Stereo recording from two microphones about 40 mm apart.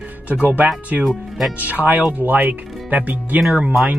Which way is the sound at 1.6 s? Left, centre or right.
Right.